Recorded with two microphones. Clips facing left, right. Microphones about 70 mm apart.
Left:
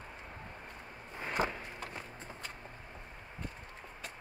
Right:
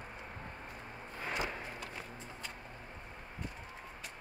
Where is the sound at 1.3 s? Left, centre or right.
Left.